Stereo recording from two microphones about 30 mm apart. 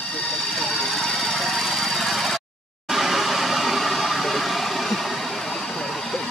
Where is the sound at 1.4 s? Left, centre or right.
Centre.